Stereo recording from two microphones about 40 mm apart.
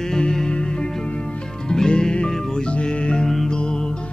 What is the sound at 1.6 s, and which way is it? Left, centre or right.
Music, centre.